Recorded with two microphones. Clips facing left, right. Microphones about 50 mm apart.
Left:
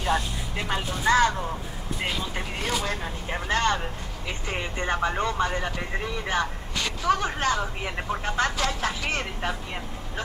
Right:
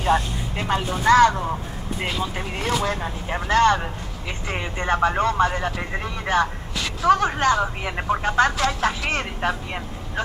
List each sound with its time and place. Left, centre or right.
0.6 s speech: centre
3.4 s speech: right
4.5 s speech: centre
5.5 s speech: centre
6.2 s speech: right